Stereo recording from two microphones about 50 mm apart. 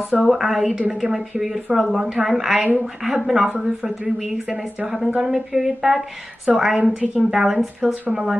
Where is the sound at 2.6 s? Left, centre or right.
Right.